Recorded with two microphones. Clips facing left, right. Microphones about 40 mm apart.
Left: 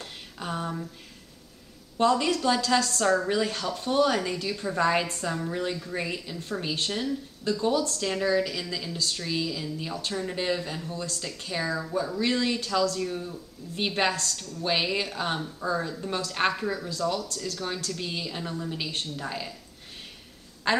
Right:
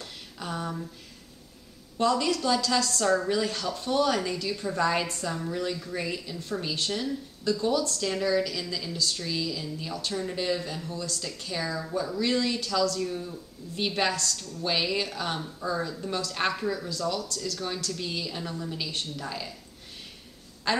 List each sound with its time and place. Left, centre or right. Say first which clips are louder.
0.0 s a sound: left 2 dB; left
2.0 s a woman's voice: left 2 dB; left
5.3 s a woman's voice: left 2 dB; centre
16.1 s a woman's voice: left 3 dB; left
17.1 s a woman's voice: left 1 dB; left
20.7 s a woman's voice: left 2 dB; left